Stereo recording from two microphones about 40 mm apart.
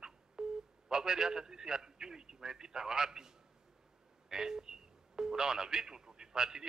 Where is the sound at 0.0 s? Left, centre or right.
Centre.